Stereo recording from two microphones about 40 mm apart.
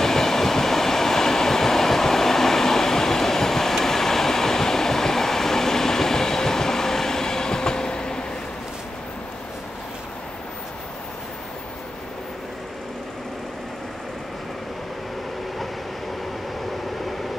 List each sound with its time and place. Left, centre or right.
0.0 s train: centre